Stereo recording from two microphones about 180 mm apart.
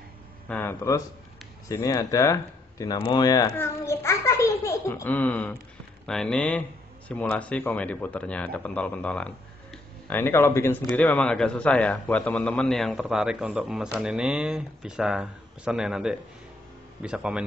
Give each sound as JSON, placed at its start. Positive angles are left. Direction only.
{"t": 0.5, "sound": "a man's voice", "side_deg": 10}